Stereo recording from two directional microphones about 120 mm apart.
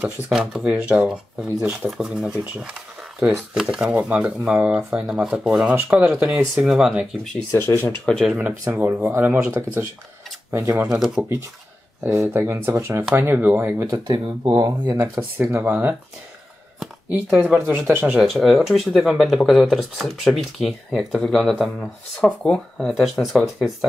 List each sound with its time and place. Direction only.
0.0 s speech: 5° right (ahead or behind)
6.6 s speech: 5° right (ahead or behind)
7.5 s speech: 25° left (ahead or behind)
7.8 s speech: 10° left (ahead or behind)
8.5 s speech: 15° right (ahead or behind)
10.9 s speech: 5° right (ahead or behind)
12.0 s speech: 20° right (ahead or behind)
14.0 s speech: 45° right (ahead or behind)
14.5 s speech: 30° right (ahead or behind)
18.0 s speech: 5° right (ahead or behind)